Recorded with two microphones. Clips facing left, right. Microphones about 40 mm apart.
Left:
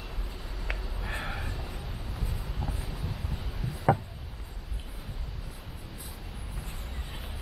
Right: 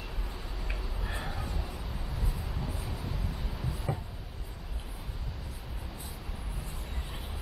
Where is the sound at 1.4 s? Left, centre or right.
Centre.